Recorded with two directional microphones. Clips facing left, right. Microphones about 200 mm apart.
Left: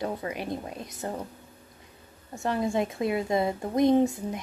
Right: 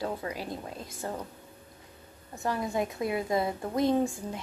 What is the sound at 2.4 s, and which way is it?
A woman's voice, 25° left (ahead or behind).